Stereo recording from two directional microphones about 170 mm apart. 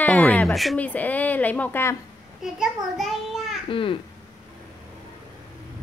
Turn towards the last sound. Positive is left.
turn(degrees=30)  # may be behind; listen again after turning